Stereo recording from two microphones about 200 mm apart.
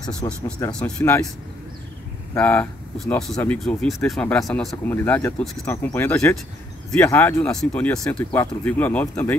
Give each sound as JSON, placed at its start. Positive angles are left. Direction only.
{"t": 0.0, "sound": "speech", "side_deg": 15}
{"t": 0.7, "sound": "speech", "side_deg": 5}
{"t": 2.3, "sound": "speech", "side_deg": 10}